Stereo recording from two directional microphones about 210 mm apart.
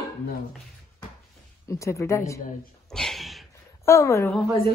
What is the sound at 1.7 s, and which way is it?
Speech, 15° left (ahead or behind).